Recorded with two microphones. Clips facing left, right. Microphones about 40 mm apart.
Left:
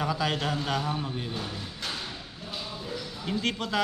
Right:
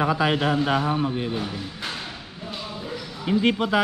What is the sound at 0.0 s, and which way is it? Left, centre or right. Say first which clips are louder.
Speech: right 7 dB; right.